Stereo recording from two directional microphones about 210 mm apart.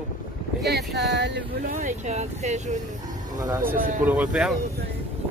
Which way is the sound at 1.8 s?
35° right (ahead or behind).